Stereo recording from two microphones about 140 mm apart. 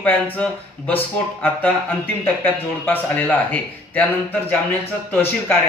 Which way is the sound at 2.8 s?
15° left (ahead or behind).